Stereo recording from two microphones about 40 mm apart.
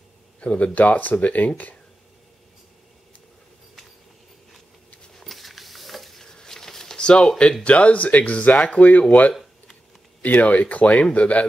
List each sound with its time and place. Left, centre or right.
0.4 s speech: left
0.7 s speech: left
5.1 s a sound: centre
6.2 s patter: centre
7.0 s speech: left
9.3 s a sound: centre
10.4 s speech: left